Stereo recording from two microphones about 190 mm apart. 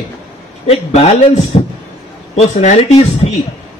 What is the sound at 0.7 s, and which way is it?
A man's voice, 35° left (ahead or behind).